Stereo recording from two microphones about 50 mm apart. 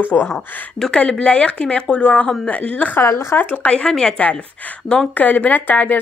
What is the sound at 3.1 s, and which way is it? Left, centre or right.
Speech, left.